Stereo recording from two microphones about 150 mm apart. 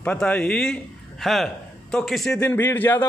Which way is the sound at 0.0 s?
10° left (ahead or behind).